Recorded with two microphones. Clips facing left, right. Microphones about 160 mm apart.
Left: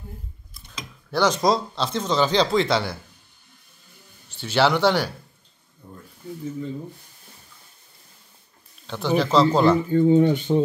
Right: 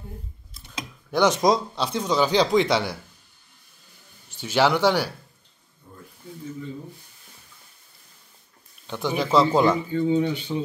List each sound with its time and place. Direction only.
0.6 s speech: 20° right (ahead or behind)
4.3 s a man's voice: 10° right (ahead or behind)
8.8 s a man's voice: 10° right (ahead or behind)
9.8 s speech: 45° left (ahead or behind)